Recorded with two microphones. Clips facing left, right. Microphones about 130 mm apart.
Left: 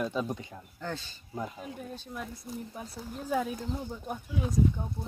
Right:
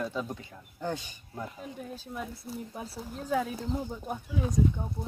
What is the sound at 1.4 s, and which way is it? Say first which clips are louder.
Speech: left 1 dB; centre (ahead or behind).